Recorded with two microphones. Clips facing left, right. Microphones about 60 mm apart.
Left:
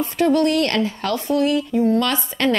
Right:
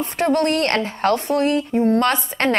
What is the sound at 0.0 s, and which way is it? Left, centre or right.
Speech, right.